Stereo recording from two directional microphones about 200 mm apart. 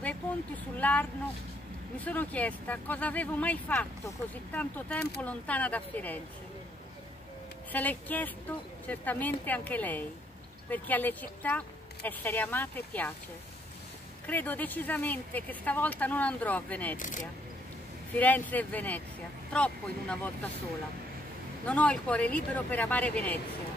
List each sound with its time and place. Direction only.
0.7 s speech: 5° left (ahead or behind)
7.7 s speech: 10° left (ahead or behind)
14.2 s speech: 10° left (ahead or behind)
17.0 s speech: 40° left (ahead or behind)
18.1 s speech: 10° left (ahead or behind)
21.6 s speech: 5° left (ahead or behind)